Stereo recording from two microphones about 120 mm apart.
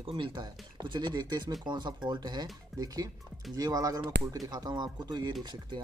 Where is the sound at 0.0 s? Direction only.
45° right (ahead or behind).